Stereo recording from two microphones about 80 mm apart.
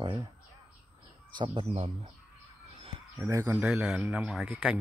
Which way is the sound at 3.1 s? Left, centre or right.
Right.